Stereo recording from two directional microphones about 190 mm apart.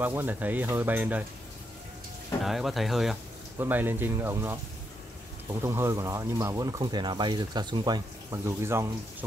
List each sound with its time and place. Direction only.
0.0 s speech: 10° right (ahead or behind)
2.4 s speech: centre (ahead or behind)